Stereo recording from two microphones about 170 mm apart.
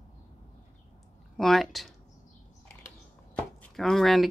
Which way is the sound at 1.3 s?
Centre (ahead or behind).